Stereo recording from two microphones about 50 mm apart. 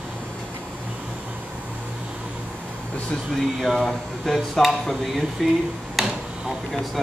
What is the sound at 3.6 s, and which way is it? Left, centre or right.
Speech, centre.